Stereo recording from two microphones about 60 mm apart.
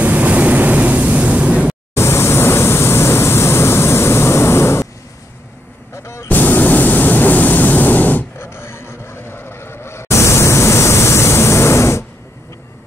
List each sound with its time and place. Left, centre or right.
0.0 s vehicle: right
2.0 s vehicle: left
6.2 s a sound: left
8.5 s vehicle: left